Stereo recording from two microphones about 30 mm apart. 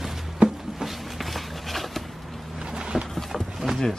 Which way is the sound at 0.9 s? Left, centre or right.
Centre.